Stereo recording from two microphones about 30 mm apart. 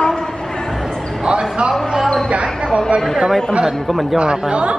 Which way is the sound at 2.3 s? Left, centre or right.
Right.